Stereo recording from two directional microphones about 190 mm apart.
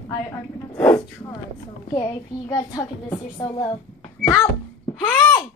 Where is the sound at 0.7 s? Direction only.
10° left (ahead or behind).